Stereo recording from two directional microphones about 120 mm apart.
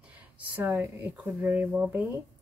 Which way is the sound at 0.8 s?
20° right (ahead or behind).